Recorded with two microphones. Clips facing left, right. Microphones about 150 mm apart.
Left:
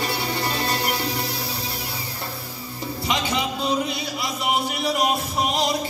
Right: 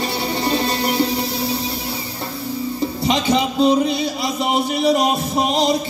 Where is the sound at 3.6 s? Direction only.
25° right (ahead or behind).